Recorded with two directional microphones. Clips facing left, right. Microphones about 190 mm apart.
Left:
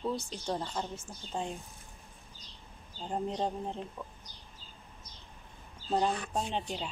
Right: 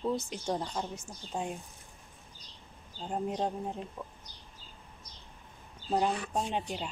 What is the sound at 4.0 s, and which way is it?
Speech, 15° right (ahead or behind).